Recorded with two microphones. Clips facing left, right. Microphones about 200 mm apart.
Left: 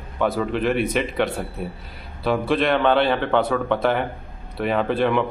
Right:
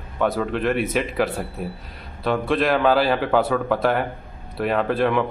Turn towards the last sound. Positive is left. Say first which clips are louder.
# even
turn(degrees=0)  # may be behind; listen again after turning